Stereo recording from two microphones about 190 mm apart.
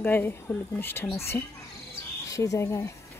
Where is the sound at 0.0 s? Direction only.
10° left (ahead or behind).